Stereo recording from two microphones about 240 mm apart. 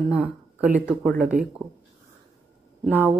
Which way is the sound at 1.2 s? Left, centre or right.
Right.